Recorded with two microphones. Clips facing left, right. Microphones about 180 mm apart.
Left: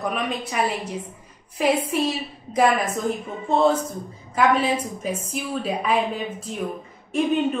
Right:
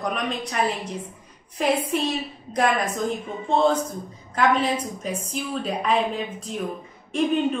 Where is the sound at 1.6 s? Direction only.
5° left (ahead or behind).